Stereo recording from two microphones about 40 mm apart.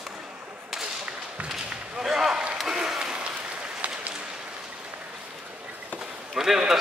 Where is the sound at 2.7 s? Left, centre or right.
Centre.